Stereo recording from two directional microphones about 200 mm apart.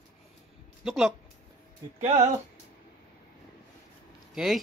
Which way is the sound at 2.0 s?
35° right (ahead or behind).